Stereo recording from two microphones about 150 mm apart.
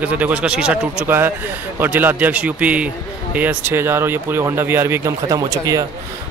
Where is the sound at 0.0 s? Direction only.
10° right (ahead or behind).